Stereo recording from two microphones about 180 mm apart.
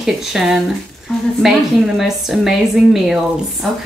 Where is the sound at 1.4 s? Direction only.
Centre (ahead or behind).